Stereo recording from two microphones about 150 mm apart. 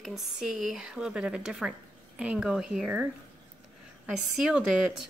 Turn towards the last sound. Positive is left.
turn(degrees=-5)  # may be behind; listen again after turning